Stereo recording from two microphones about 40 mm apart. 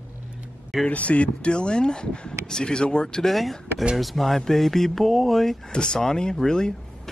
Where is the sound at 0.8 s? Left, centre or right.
Left.